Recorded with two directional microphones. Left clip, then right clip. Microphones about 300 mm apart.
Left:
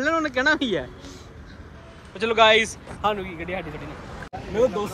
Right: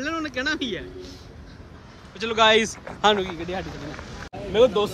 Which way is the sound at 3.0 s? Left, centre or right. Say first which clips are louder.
Right 5 dB; right.